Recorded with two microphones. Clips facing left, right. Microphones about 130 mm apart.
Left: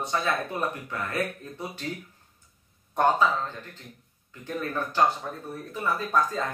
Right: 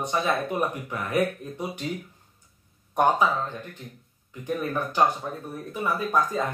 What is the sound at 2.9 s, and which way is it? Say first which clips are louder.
Speech: right 1 dB; 15° right (ahead or behind).